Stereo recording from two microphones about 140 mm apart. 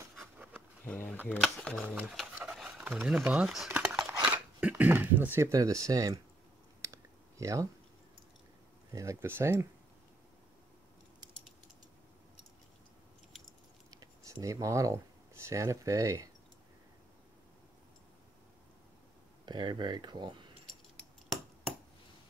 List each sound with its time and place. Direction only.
0.4 s a sound: 10° right (ahead or behind)
0.8 s speech: 10° left (ahead or behind)
2.0 s speech: 10° right (ahead or behind); by 6.1 s 25° right (ahead or behind)
6.8 s a sound: 20° right (ahead or behind)
8.9 s speech: 20° right (ahead or behind)
13.8 s speech: 25° right (ahead or behind)
19.4 s speech: 30° right (ahead or behind)